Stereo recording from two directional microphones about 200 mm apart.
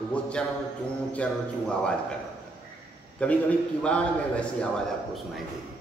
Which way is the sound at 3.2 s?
5° left (ahead or behind).